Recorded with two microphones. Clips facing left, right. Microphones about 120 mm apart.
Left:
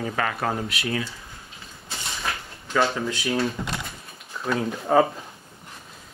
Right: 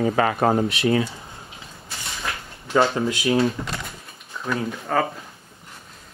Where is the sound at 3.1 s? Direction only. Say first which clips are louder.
Right 5 dB; 10° right (ahead or behind).